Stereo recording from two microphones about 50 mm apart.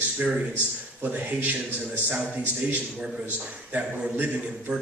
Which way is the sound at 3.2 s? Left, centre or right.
Right.